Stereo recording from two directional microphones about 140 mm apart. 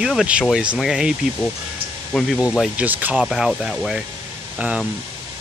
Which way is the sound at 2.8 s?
10° right (ahead or behind).